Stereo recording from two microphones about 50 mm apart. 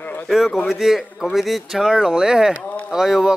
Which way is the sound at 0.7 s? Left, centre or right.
Centre.